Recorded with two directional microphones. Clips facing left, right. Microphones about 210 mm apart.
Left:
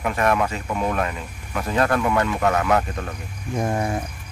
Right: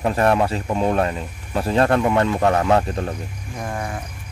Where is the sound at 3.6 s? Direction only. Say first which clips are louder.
Left 4 dB; 25° left (ahead or behind).